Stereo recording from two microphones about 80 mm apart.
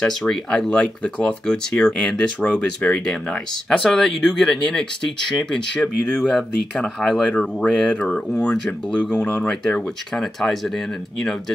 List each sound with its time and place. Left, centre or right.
0.0 s speech: centre